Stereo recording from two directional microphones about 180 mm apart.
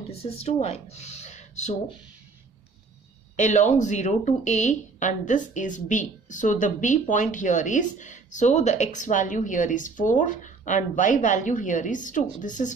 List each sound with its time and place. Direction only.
0.1 s speech: 35° left (ahead or behind)
3.3 s speech: 40° left (ahead or behind)